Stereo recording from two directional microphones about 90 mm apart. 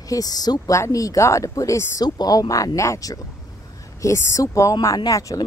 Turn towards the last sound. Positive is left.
turn(degrees=35)  # may be behind; listen again after turning